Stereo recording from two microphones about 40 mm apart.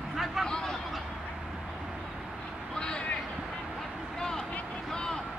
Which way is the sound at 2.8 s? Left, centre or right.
Left.